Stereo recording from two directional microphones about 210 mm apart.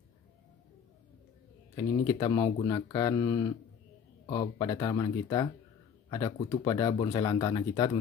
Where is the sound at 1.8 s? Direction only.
15° left (ahead or behind).